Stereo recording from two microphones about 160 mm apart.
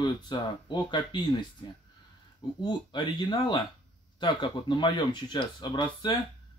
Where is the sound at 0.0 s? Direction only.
30° left (ahead or behind).